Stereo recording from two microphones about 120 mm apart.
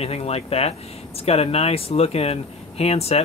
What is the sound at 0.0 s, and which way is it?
Speech, 60° left (ahead or behind).